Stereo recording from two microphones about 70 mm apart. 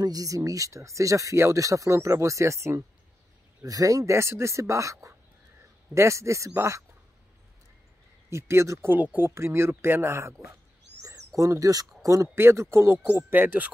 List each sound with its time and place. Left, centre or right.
0.0 s speech: right
3.6 s speech: right
8.3 s speech: right
8.9 s speech: right
11.0 s a sound: right
12.0 s speech: right
12.4 s speech: right